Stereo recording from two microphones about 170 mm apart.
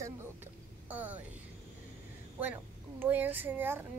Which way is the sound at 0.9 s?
10° right (ahead or behind).